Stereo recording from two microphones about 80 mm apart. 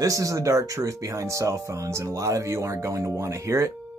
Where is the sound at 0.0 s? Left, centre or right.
Right.